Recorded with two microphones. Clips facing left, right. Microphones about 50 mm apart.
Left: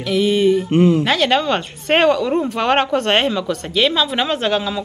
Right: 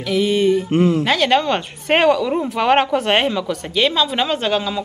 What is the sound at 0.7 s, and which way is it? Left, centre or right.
Speech, left.